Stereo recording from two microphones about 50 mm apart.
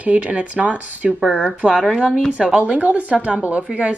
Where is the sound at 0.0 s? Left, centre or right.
Right.